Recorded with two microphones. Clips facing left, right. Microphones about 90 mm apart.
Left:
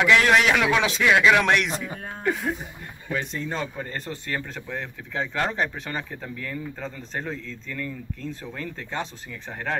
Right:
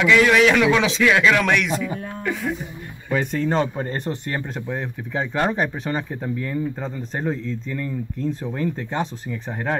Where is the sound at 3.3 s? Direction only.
55° right (ahead or behind).